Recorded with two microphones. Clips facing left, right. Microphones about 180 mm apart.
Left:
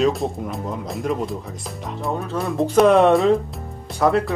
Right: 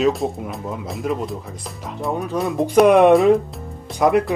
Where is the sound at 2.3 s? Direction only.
15° right (ahead or behind).